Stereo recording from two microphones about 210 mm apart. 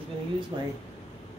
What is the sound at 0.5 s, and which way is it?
Speech, 20° right (ahead or behind).